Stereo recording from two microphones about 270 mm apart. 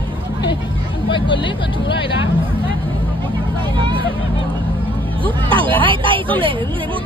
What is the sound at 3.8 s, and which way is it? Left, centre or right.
Vehicle, centre.